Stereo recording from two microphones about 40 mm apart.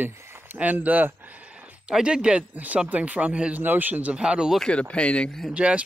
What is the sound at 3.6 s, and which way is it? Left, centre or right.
Speech, right.